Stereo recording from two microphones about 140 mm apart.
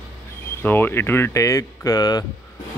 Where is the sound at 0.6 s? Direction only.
15° left (ahead or behind).